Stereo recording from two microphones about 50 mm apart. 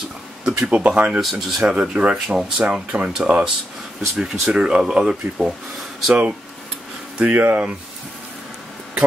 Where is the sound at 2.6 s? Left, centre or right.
Right.